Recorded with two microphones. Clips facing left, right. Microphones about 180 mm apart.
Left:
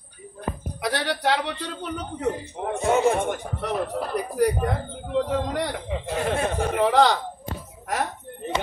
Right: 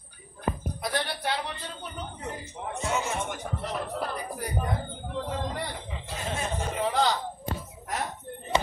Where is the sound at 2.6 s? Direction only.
55° left (ahead or behind).